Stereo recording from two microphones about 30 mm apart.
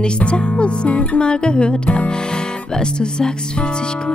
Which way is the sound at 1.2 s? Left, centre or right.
Left.